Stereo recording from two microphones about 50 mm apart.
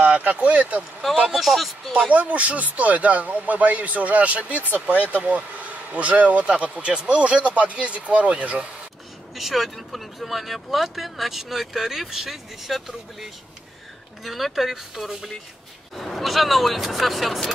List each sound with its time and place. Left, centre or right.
0.0 s speech: right
1.3 s speech: centre
1.9 s speech: right
9.3 s speech: centre